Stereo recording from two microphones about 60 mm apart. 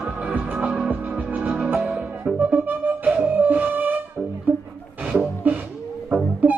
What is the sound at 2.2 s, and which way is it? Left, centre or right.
Music, right.